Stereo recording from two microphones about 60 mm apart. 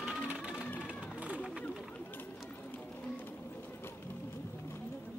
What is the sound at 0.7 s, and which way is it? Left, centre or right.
Run, centre.